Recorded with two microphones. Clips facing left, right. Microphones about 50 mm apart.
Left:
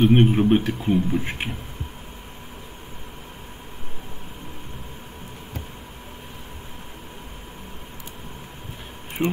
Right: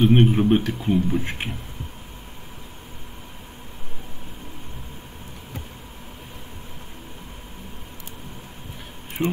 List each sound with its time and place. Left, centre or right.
0.0 s speech: centre
9.2 s speech: centre